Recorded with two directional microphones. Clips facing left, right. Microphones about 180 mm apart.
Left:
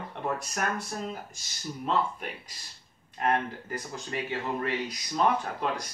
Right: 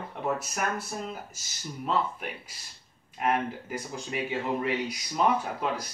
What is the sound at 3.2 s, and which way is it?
Speech, 10° right (ahead or behind).